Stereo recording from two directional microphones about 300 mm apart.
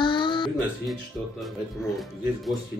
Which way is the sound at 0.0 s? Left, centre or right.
Centre.